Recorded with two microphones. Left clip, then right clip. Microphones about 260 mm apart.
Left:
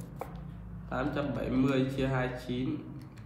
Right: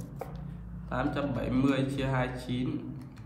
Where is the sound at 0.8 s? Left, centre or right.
Right.